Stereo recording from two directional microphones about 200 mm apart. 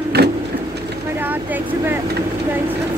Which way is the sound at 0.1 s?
55° right (ahead or behind).